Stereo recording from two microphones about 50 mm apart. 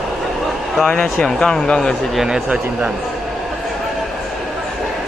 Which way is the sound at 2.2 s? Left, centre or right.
Centre.